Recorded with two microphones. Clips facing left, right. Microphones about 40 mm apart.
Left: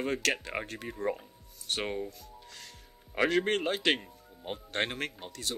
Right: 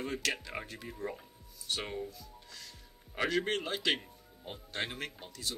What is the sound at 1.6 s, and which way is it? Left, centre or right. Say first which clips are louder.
Music: left 4 dB; left.